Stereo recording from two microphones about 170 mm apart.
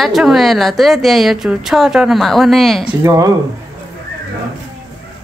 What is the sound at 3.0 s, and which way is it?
Speech, 20° right (ahead or behind).